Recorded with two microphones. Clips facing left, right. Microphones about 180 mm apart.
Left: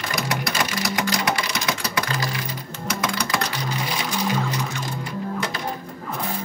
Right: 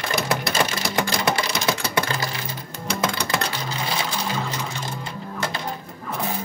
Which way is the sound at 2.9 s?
30° right (ahead or behind).